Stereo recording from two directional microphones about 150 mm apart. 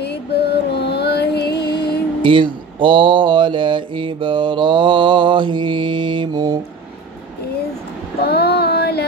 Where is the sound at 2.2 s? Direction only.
35° right (ahead or behind).